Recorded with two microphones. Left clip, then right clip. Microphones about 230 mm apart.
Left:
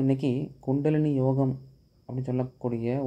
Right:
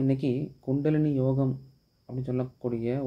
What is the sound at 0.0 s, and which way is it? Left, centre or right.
Speech, centre.